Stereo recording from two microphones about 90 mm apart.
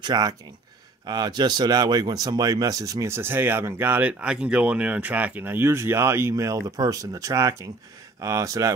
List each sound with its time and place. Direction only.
0.0 s speech: 45° right (ahead or behind)